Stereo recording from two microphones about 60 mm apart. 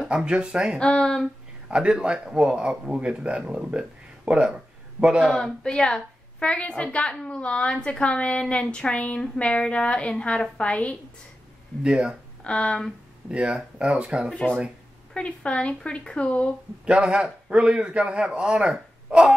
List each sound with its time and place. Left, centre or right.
0.1 s a man's voice: centre
0.7 s speech: centre
1.7 s a man's voice: centre
5.3 s a woman's voice: centre
11.8 s a man's voice: centre
12.4 s speech: centre
13.3 s speech: centre
15.1 s a woman's voice: centre
16.8 s a man's voice: centre